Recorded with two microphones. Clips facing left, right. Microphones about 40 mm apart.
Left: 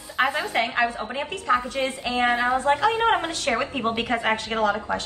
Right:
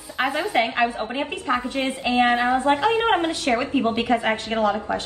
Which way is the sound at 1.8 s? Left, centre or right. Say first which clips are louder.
Right 3 dB; right.